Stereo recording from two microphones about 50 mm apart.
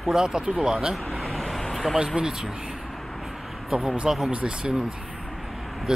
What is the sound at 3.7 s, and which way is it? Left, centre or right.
Speech, centre.